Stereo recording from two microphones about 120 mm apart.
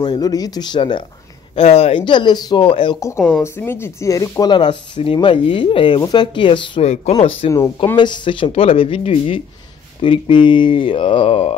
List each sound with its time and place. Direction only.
0.0 s speech: 35° left (ahead or behind)
1.5 s speech: 55° left (ahead or behind)
3.0 s speech: 25° left (ahead or behind); by 6.8 s 45° left (ahead or behind)
6.8 s speech: 65° left (ahead or behind)
7.5 s speech: 30° left (ahead or behind); by 11.5 s 50° left (ahead or behind)